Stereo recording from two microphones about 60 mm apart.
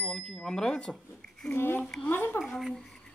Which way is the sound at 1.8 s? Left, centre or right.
Centre.